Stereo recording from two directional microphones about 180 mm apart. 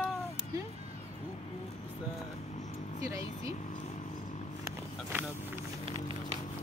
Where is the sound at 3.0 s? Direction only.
20° right (ahead or behind).